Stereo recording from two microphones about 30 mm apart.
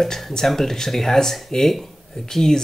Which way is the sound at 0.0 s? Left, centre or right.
Centre.